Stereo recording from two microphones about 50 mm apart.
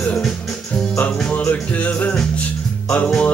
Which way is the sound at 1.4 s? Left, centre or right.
Left.